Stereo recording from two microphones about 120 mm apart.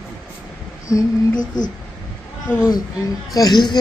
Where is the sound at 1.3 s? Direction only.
90° left.